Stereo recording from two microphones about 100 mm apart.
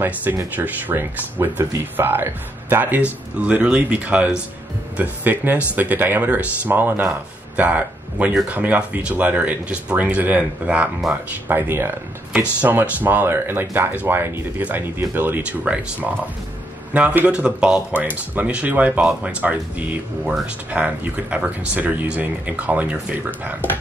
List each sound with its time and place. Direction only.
0.0 s speech: 20° right (ahead or behind)